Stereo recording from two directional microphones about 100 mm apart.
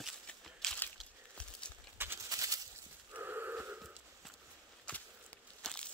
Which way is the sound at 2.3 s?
35° right (ahead or behind).